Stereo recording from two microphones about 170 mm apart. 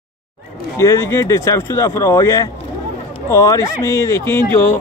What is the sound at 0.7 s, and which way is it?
Speech, 15° left (ahead or behind).